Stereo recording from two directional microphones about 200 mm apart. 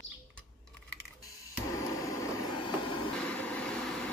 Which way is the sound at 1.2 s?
15° left (ahead or behind).